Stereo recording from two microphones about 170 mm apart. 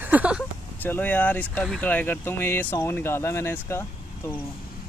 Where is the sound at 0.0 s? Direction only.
10° right (ahead or behind).